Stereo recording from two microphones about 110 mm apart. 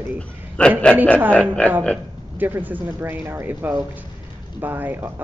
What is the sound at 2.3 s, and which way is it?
Speech, 15° right (ahead or behind).